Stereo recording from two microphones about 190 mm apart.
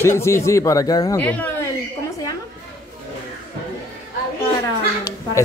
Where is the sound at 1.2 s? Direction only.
10° left (ahead or behind).